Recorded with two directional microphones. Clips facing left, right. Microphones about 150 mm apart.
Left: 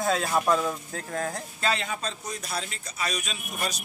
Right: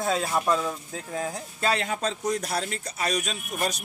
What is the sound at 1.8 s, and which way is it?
A man's voice, 65° right (ahead or behind).